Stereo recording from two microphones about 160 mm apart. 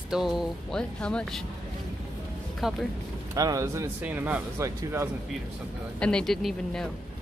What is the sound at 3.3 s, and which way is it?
Speech, 20° right (ahead or behind).